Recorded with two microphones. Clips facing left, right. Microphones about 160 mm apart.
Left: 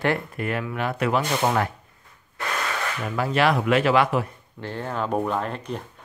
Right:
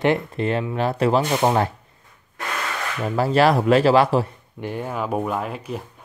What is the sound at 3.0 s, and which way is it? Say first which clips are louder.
Speech: right 5 dB; 35° right (ahead or behind).